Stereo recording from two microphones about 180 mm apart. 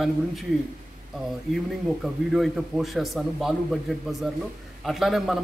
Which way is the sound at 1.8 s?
Centre (ahead or behind).